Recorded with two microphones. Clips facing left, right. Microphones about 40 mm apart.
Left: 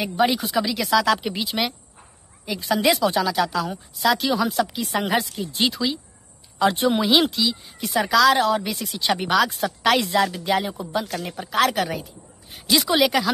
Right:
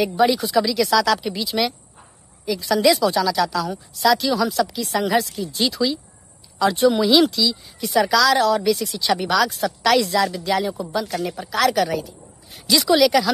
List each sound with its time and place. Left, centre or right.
0.0 s a woman's voice: centre
5.4 s a woman's voice: left
7.8 s a woman's voice: centre
11.6 s a woman's voice: centre